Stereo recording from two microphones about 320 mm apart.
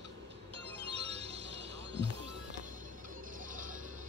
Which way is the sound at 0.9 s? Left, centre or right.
Centre.